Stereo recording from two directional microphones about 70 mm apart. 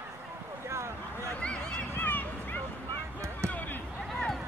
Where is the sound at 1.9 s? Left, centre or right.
Left.